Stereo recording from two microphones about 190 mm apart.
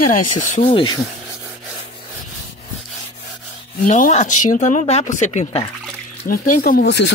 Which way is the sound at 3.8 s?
40° left (ahead or behind).